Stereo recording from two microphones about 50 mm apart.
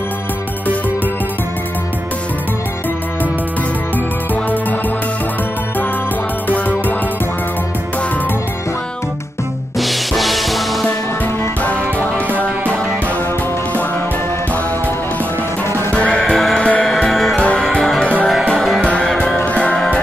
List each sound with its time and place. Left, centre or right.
9.8 s music: centre
15.9 s music: left
16.2 s music: centre
16.5 s music: left
17.1 s music: centre
19.1 s music: centre
19.4 s music: left